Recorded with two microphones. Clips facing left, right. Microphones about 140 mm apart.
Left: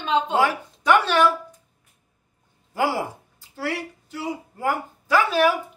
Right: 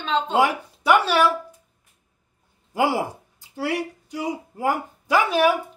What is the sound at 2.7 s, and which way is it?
A woman's voice, 15° right (ahead or behind).